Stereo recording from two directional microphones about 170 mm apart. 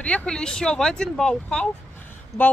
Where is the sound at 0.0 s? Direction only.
5° left (ahead or behind).